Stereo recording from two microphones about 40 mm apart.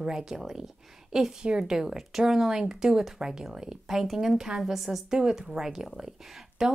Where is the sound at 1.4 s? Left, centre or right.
Right.